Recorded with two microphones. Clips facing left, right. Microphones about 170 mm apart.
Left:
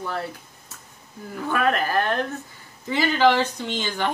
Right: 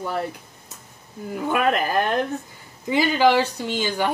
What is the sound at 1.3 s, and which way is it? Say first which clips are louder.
A woman's voice: right 2 dB; 15° right (ahead or behind).